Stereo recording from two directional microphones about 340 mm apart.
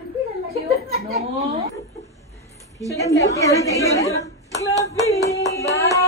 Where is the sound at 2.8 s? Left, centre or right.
Centre.